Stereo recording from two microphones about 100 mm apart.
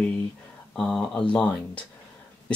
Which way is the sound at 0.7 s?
5° left (ahead or behind).